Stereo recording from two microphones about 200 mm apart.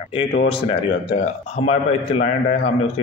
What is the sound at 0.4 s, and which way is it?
Speech, 30° left (ahead or behind).